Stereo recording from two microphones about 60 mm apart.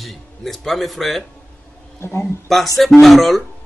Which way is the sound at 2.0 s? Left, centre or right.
Left.